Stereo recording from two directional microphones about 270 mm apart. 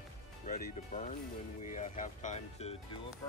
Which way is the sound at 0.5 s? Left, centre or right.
Left.